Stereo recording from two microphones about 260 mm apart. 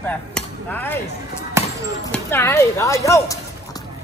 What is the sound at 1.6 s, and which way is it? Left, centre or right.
Basketball bounce, centre.